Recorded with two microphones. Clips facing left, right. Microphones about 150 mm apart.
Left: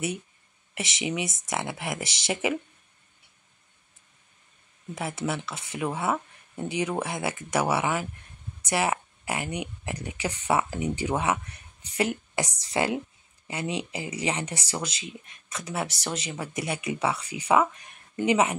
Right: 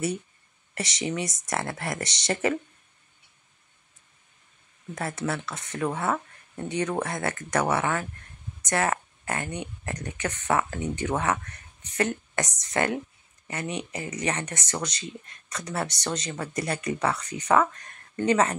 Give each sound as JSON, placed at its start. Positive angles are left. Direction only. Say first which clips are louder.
{"t": 0.7, "sound": "speech", "louder": "right 1 dB", "side_deg": 5}
{"t": 4.9, "sound": "speech", "louder": "even", "side_deg": 5}
{"t": 13.6, "sound": "speech", "louder": "left 1 dB", "side_deg": 25}
{"t": 13.9, "sound": "speech", "louder": "even", "side_deg": 10}